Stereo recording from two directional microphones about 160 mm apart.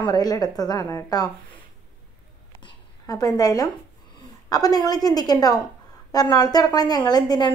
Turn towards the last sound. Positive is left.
turn(degrees=25)  # may be behind; listen again after turning